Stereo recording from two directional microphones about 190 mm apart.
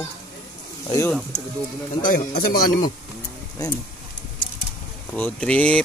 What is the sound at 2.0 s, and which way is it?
Speech, 50° left (ahead or behind).